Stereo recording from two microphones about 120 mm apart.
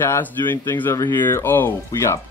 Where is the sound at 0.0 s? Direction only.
20° left (ahead or behind).